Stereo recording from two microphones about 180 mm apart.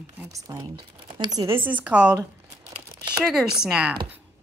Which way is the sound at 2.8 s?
15° right (ahead or behind).